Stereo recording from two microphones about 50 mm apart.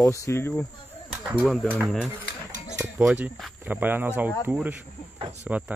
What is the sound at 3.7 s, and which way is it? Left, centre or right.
Speech, right.